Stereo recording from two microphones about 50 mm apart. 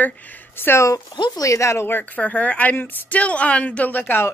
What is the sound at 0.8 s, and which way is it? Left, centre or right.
Speech, left.